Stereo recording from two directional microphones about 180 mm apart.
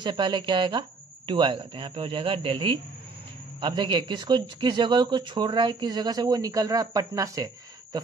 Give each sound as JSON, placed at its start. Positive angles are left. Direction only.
{"t": 0.0, "sound": "speech", "side_deg": -25}